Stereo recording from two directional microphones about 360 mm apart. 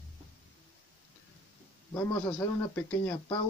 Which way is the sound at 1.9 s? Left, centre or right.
Centre.